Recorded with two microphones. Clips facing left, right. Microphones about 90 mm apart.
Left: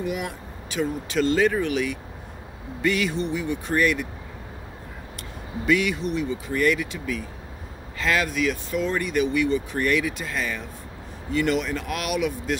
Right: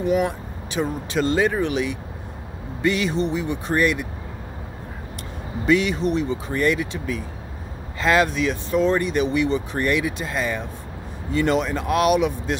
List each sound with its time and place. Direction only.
0.0 s speech: 30° right (ahead or behind)
5.7 s speech: 30° right (ahead or behind)